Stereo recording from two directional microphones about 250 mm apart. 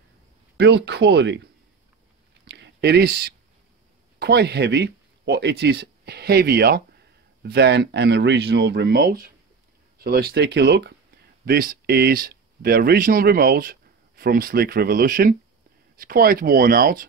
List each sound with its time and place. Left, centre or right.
0.6 s speech: right
2.4 s a sound: right
4.2 s speech: right